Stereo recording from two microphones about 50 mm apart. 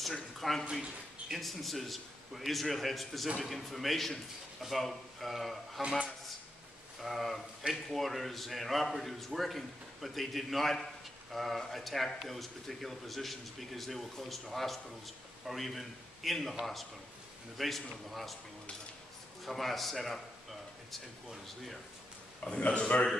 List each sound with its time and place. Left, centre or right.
0.0 s a man's voice: centre
7.0 s a man's voice: centre
19.4 s a man's voice: centre
22.4 s a man's voice: left